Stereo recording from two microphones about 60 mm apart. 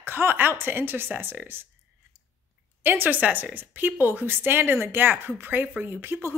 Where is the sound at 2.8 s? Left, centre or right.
Right.